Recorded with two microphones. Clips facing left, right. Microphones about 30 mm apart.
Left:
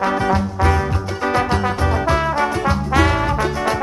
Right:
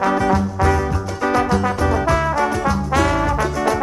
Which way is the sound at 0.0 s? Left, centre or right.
Left.